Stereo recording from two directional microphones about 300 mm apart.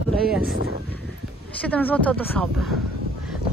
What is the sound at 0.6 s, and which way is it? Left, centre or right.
Speech, right.